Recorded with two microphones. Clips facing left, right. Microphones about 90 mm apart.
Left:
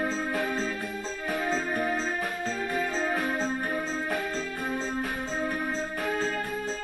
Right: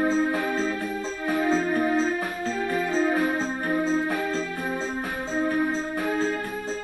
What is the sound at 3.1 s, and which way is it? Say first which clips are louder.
Music: right 4 dB; 15° right (ahead or behind).